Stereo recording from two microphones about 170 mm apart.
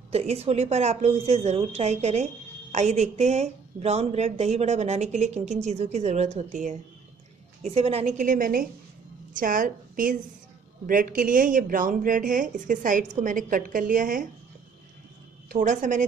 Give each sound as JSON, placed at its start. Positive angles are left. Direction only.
{"t": 0.1, "sound": "a woman's voice", "side_deg": -40}
{"t": 15.4, "sound": "speech", "side_deg": -55}